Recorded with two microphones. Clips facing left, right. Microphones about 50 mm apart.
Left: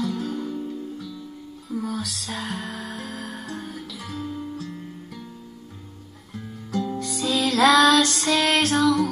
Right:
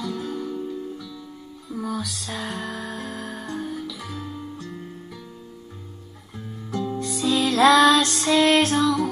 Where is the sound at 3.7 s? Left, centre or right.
Centre.